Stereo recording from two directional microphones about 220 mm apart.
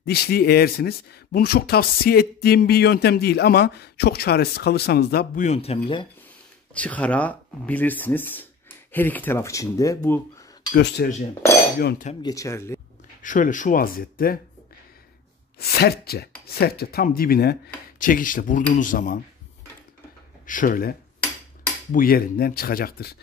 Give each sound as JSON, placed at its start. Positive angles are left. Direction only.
{"t": 0.0, "sound": "speech", "side_deg": 45}
{"t": 6.7, "sound": "speech", "side_deg": 5}
{"t": 10.7, "sound": "speech", "side_deg": 50}
{"t": 12.1, "sound": "speech", "side_deg": 20}
{"t": 13.2, "sound": "speech", "side_deg": 35}
{"t": 15.6, "sound": "speech", "side_deg": 45}
{"t": 20.4, "sound": "speech", "side_deg": 40}
{"t": 21.9, "sound": "speech", "side_deg": 40}